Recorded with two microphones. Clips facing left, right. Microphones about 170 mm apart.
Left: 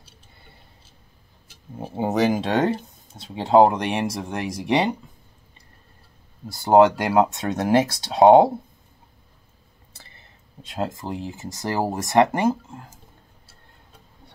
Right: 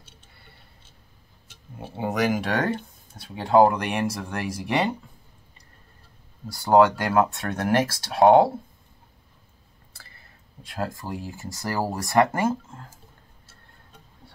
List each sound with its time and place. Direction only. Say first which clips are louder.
2.0 s speech: left 3 dB; 25° left (ahead or behind)
6.4 s speech: left 2 dB; 20° left (ahead or behind)
9.9 s speech: left 1 dB; 20° left (ahead or behind)